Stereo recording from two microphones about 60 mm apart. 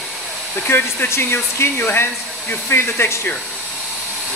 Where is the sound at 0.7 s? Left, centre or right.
Left.